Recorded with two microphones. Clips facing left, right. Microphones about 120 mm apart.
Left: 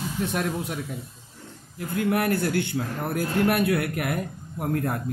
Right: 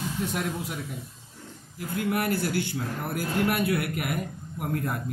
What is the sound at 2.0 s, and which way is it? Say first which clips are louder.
A man's voice: left 3 dB; 55° left (ahead or behind).